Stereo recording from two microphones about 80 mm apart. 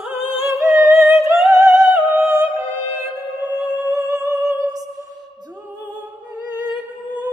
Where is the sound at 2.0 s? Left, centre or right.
Centre.